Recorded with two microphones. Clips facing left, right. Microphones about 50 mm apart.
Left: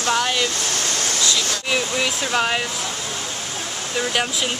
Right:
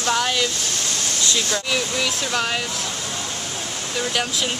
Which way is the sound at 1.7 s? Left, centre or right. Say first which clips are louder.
Left 1 dB; centre.